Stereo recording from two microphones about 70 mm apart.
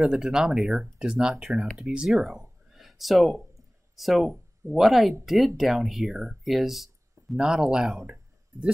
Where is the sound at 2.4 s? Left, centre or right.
Centre.